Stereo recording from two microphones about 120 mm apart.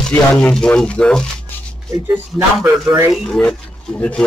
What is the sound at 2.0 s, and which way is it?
Speech, 20° right (ahead or behind).